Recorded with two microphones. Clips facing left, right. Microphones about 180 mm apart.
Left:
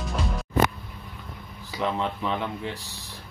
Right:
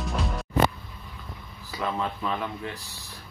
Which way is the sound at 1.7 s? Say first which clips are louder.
Left 2 dB; 25° left (ahead or behind).